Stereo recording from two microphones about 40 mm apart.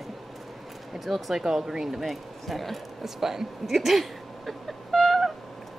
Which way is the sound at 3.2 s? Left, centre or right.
Centre.